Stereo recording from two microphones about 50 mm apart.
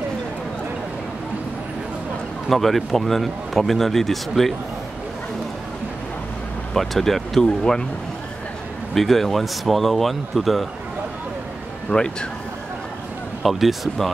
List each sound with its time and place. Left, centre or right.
2.5 s a man's voice: centre
6.7 s a man's voice: centre
8.9 s a man's voice: centre
11.9 s speech: centre
13.4 s a man's voice: centre